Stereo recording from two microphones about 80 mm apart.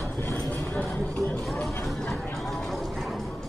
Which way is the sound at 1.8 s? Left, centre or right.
Centre.